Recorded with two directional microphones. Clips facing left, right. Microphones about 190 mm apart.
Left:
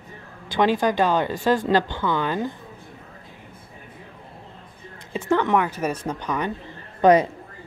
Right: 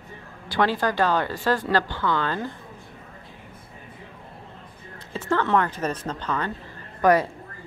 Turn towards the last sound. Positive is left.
turn(degrees=20)  # may be behind; listen again after turning